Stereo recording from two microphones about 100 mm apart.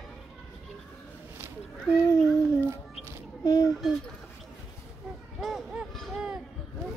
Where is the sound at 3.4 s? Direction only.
45° left (ahead or behind).